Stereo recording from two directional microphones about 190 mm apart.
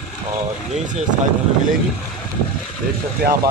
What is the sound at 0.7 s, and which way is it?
Speech, 40° right (ahead or behind).